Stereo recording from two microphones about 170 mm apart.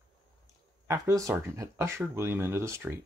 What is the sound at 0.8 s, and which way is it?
Speech, 15° right (ahead or behind).